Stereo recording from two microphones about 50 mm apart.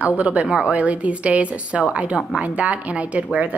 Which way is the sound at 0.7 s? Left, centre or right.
Right.